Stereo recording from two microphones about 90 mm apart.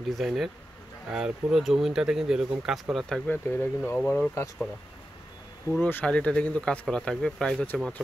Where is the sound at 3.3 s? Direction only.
25° left (ahead or behind).